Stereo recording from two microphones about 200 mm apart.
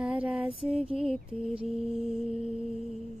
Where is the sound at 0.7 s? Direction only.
30° right (ahead or behind).